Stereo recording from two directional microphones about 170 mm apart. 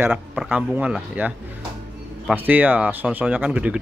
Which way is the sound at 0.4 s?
5° right (ahead or behind).